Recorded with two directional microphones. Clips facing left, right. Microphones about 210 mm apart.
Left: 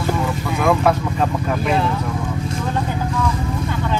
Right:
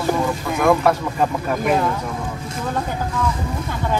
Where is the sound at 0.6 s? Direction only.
Centre (ahead or behind).